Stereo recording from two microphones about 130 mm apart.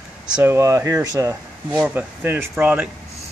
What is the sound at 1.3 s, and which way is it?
Speech, 10° right (ahead or behind).